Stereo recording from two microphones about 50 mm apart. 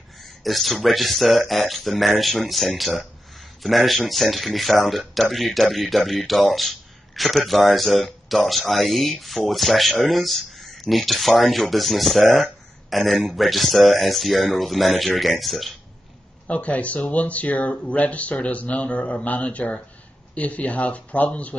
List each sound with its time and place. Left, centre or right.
0.2 s speech: centre
16.4 s speech: left